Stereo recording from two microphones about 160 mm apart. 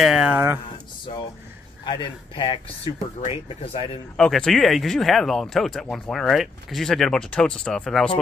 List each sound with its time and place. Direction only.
0.0 s speech: 5° right (ahead or behind)
1.9 s speech: 30° left (ahead or behind)
4.2 s speech: centre (ahead or behind)